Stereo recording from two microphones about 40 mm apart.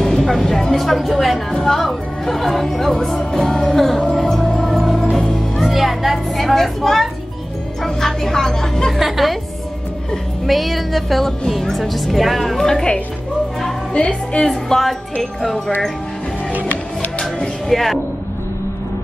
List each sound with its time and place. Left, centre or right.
0.0 s a sound: centre
1.5 s music: centre
2.2 s a woman's voice: centre
3.3 s music: centre
6.3 s speech: centre
7.8 s music: centre
8.9 s a woman's voice: centre
10.4 s a woman's voice: centre
13.9 s a woman's voice: left
14.5 s a woman's voice: centre
17.2 s music: centre